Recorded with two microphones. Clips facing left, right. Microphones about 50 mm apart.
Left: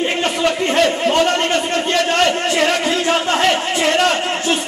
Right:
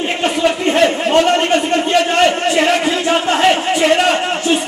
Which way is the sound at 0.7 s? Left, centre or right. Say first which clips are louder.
Right 2 dB; centre.